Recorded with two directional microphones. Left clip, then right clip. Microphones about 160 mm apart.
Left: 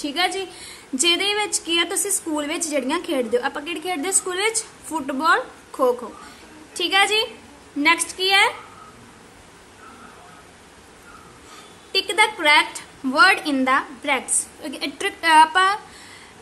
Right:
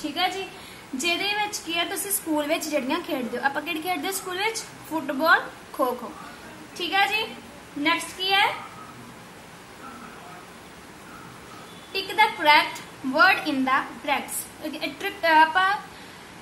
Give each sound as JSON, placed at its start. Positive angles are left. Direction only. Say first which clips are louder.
{"t": 0.0, "sound": "a woman's voice", "louder": "left 3 dB", "side_deg": 30}
{"t": 11.9, "sound": "a woman's voice", "louder": "left 3 dB", "side_deg": 20}